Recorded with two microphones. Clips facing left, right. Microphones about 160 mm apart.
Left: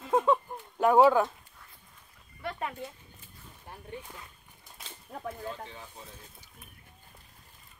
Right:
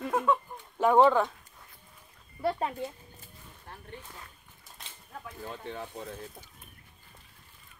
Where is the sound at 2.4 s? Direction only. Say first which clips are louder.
Right 6 dB; 30° right (ahead or behind).